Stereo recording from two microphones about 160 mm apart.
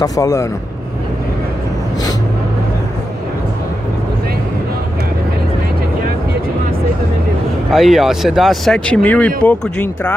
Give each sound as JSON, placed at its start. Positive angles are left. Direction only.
{"t": 0.0, "sound": "speech", "side_deg": 20}
{"t": 7.7, "sound": "speech", "side_deg": 0}